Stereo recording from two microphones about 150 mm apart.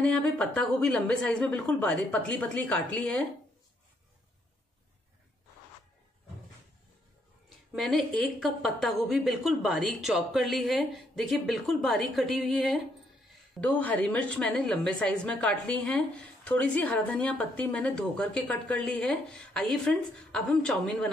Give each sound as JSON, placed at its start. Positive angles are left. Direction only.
{"t": 0.0, "sound": "a woman's voice", "side_deg": 5}
{"t": 7.4, "sound": "a woman's voice", "side_deg": 0}